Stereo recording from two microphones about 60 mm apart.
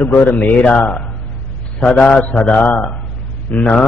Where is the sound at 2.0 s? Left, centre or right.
Left.